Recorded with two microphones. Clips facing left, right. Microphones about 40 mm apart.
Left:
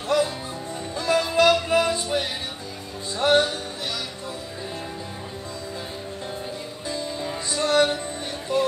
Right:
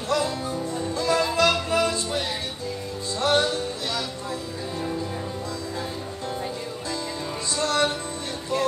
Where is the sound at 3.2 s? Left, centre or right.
Centre.